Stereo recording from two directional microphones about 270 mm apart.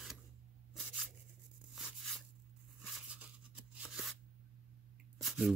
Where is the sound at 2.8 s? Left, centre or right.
Centre.